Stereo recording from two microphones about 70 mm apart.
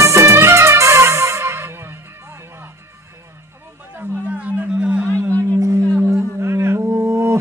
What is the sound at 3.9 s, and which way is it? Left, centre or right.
Music, centre.